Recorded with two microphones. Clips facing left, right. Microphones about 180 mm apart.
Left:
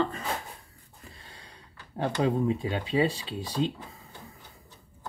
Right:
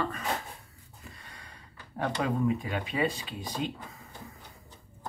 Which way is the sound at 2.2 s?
25° left (ahead or behind).